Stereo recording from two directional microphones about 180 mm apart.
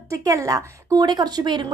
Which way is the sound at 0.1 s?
20° right (ahead or behind).